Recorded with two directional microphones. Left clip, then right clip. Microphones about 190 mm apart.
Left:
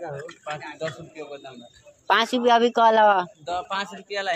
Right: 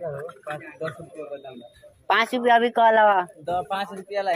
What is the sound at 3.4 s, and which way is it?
Speech, 45° left (ahead or behind).